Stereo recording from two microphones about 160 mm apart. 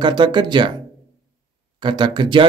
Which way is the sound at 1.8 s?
30° right (ahead or behind).